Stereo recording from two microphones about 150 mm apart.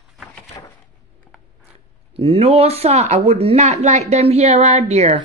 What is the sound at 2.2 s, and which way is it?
Speech, 40° right (ahead or behind).